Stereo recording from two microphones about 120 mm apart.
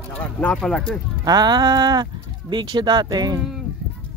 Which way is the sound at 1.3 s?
35° right (ahead or behind).